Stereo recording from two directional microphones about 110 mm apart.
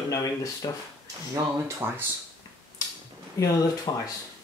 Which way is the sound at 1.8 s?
15° right (ahead or behind).